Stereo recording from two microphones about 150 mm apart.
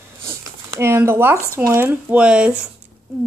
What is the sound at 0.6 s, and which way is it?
Speech, 20° right (ahead or behind).